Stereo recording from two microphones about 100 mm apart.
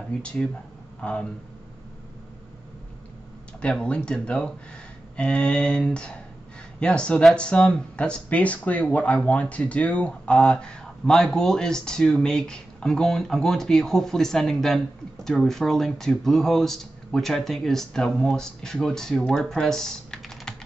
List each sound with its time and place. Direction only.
0.2 s speech: 10° left (ahead or behind)
3.6 s speech: 10° left (ahead or behind)